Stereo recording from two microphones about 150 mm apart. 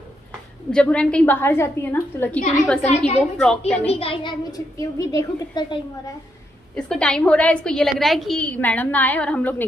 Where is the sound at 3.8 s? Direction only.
40° left (ahead or behind); by 5.8 s 25° left (ahead or behind).